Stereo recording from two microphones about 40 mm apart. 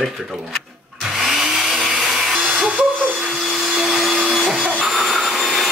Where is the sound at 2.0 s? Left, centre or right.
Centre.